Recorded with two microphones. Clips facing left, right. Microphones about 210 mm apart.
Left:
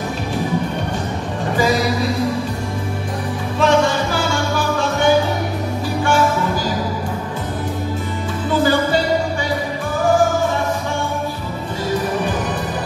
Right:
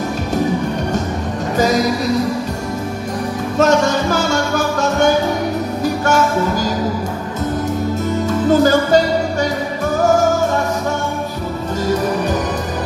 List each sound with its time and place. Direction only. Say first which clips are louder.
3.5 s music: right 2 dB; 45° right (ahead or behind)
8.5 s music: right 4 dB; 45° right (ahead or behind)